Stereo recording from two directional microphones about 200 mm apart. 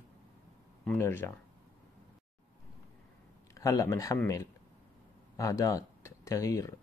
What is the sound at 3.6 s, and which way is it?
Speech, 15° left (ahead or behind).